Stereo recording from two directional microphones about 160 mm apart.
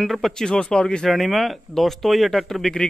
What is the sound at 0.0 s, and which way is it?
A man's voice, centre (ahead or behind).